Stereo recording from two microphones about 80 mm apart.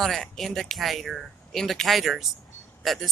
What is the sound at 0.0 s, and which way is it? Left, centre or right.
Speech, centre.